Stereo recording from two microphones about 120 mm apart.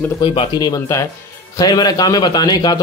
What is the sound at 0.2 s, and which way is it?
A man's voice, 45° left (ahead or behind).